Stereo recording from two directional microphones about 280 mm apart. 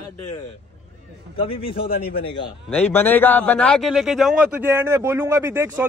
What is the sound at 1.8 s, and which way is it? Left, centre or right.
Speech, left.